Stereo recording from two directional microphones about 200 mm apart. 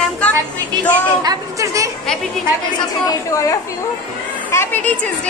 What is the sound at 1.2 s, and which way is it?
Speech, 15° right (ahead or behind).